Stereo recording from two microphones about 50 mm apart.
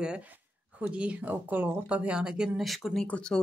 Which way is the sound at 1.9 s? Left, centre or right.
Right.